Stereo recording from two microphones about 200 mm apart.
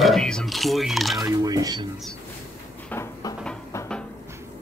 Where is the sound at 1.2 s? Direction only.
20° right (ahead or behind).